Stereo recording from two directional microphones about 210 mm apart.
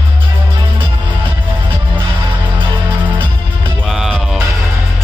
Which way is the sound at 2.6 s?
20° right (ahead or behind).